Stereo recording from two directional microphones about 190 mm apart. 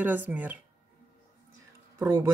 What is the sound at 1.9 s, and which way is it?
Speech, 15° right (ahead or behind).